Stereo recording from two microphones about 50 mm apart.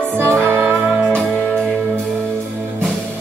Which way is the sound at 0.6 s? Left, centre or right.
Right.